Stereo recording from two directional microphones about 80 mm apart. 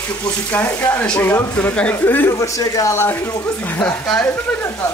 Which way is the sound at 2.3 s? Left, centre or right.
Left.